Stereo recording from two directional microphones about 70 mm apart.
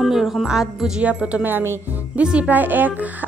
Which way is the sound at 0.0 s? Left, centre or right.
Centre.